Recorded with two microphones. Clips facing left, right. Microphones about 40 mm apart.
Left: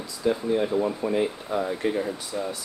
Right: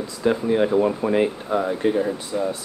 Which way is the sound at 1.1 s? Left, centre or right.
Right.